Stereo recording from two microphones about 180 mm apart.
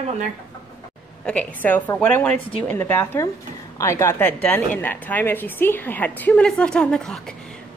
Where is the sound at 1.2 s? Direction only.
10° left (ahead or behind).